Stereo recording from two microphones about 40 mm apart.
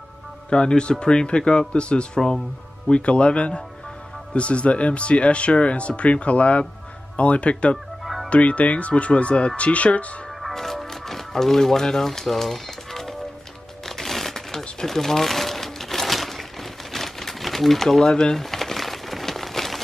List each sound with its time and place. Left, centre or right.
0.5 s speech: left
8.0 s music: centre
8.3 s speech: left
10.4 s music: centre
14.6 s crumpling: centre